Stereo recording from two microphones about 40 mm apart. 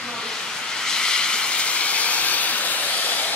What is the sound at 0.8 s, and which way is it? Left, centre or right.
Vehicle, centre.